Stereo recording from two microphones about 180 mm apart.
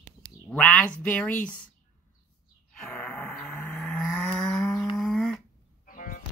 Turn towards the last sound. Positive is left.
turn(degrees=45)  # may be behind; listen again after turning